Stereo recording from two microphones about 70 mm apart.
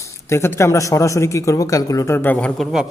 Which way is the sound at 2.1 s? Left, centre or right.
Left.